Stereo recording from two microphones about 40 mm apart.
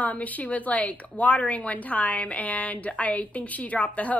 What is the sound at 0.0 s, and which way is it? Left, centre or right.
A woman's voice, left.